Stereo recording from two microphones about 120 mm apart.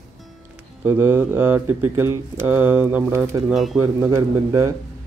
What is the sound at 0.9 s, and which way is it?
A man's voice, 20° right (ahead or behind).